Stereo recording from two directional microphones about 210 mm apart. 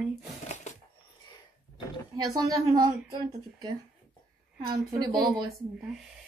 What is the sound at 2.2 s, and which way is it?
A woman's voice, 20° right (ahead or behind).